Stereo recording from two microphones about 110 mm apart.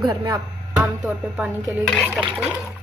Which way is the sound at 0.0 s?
45° right (ahead or behind).